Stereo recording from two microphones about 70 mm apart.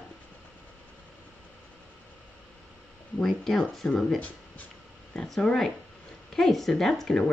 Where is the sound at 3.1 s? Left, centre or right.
Centre.